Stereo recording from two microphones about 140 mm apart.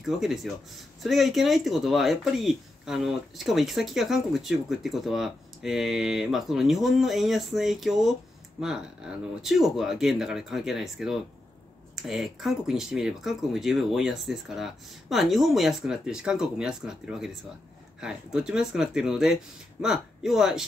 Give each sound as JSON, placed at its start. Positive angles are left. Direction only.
{"t": 0.0, "sound": "speech", "side_deg": 0}